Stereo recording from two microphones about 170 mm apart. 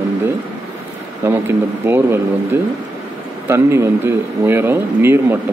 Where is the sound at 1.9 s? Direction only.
15° right (ahead or behind).